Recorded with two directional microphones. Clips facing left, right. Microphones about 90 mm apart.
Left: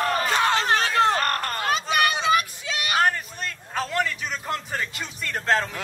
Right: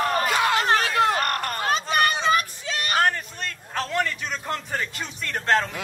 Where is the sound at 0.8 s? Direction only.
30° left (ahead or behind).